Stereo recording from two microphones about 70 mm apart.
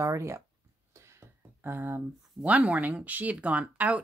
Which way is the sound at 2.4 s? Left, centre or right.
Centre.